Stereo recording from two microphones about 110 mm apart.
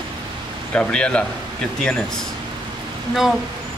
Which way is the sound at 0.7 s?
10° left (ahead or behind).